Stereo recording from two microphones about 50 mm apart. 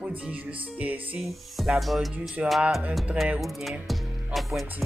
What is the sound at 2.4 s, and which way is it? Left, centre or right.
Speech, right.